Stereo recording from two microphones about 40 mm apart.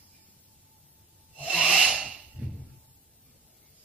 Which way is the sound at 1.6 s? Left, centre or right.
Right.